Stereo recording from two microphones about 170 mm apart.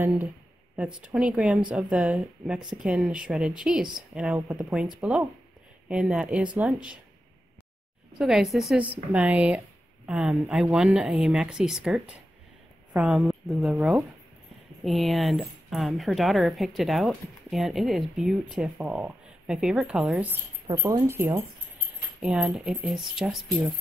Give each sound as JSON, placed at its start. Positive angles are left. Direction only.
{"t": 0.7, "sound": "a woman's voice", "side_deg": -5}
{"t": 8.2, "sound": "a woman's voice", "side_deg": 0}
{"t": 20.6, "sound": "a woman's voice", "side_deg": -25}